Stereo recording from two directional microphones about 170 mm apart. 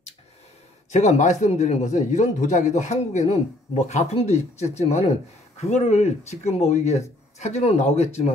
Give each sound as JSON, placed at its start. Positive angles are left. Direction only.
{"t": 0.9, "sound": "speech", "side_deg": 45}